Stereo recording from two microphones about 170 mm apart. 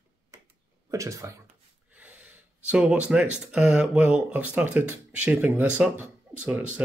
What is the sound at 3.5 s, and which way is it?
Speech, 10° right (ahead or behind).